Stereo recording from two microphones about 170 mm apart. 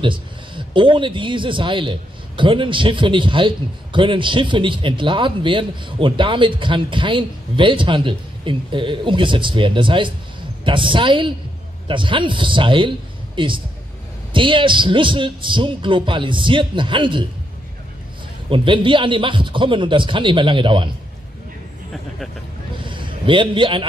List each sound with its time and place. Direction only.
0.0 s speech: 30° right (ahead or behind)
18.5 s speech: 30° right (ahead or behind)
22.8 s a sound: 30° right (ahead or behind)